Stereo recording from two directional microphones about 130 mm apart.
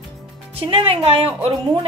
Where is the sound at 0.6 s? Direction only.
45° right (ahead or behind).